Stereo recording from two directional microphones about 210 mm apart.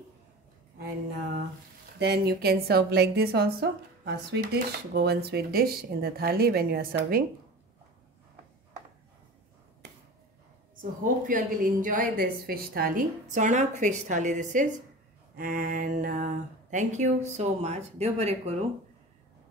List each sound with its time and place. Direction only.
2.0 s a woman's voice: 50° right (ahead or behind)
10.8 s a woman's voice: 40° right (ahead or behind)